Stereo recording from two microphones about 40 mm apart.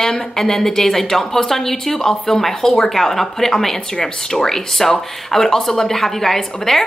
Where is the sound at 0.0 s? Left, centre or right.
Centre.